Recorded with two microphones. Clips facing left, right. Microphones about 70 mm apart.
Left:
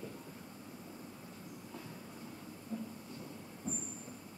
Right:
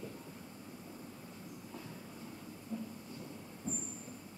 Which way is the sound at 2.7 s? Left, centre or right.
Left.